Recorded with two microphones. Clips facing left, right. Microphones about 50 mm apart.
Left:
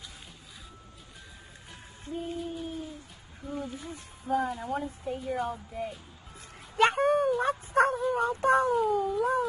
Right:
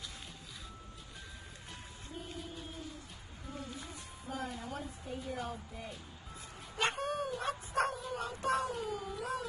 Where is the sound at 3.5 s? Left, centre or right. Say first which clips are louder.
Left 8 dB; left.